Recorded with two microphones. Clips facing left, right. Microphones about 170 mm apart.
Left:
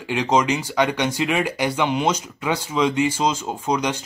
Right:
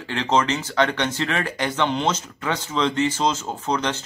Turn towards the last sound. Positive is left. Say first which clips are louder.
# left 2 dB
turn(degrees=10)  # may be behind; listen again after turning